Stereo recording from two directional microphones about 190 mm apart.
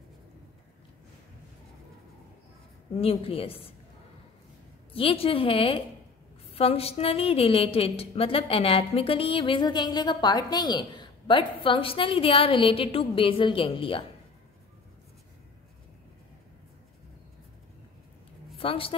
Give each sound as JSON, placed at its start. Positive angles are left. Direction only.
{"t": 3.0, "sound": "a woman's voice", "side_deg": 30}
{"t": 4.9, "sound": "a woman's voice", "side_deg": 30}
{"t": 18.6, "sound": "a woman's voice", "side_deg": 30}